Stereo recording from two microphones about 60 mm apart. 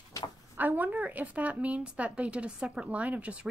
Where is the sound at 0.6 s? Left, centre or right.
Right.